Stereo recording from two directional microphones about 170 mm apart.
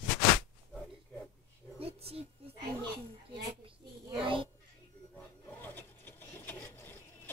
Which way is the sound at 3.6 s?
30° right (ahead or behind).